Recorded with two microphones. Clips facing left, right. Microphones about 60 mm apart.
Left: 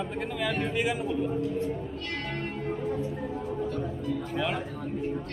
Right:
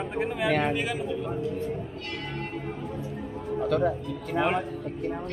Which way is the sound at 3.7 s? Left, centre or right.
Right.